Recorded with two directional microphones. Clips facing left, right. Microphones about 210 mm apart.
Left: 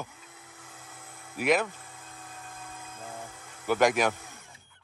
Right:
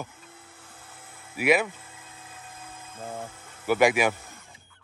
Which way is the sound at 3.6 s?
5° right (ahead or behind).